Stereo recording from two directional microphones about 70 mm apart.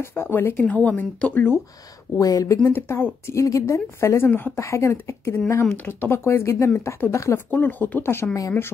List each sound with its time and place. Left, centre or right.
0.0 s speech: left
0.7 s speech: left
2.1 s a woman's voice: left
2.6 s speech: left
3.3 s a woman's voice: left
7.5 s speech: left